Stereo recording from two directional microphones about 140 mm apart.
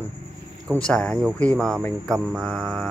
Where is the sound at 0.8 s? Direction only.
5° left (ahead or behind).